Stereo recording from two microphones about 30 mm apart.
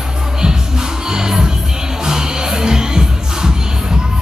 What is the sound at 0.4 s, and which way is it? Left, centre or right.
Music, right.